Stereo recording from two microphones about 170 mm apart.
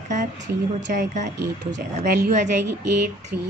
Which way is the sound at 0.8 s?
45° right (ahead or behind).